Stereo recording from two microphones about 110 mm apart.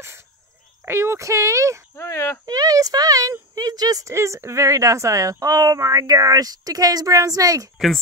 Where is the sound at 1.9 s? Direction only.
25° left (ahead or behind).